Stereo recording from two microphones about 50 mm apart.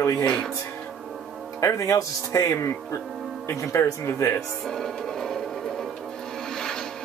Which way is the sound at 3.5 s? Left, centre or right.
Left.